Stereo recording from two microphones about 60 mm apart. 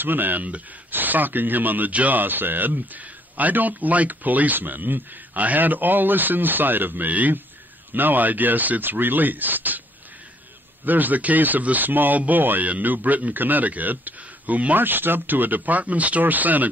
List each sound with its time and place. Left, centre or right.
0.0 s speech: right
10.9 s speech: right